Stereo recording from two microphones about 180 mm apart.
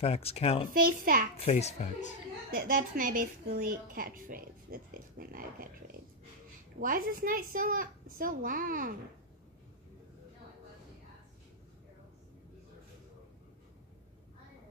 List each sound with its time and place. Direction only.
0.0 s speech: 35° left (ahead or behind)
0.7 s a woman's voice: 50° right (ahead or behind)
1.3 s speech: 35° left (ahead or behind)
2.5 s a woman's voice: 50° right (ahead or behind)
6.8 s a woman's voice: 50° right (ahead or behind)